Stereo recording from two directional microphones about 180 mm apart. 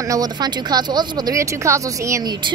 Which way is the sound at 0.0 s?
20° right (ahead or behind).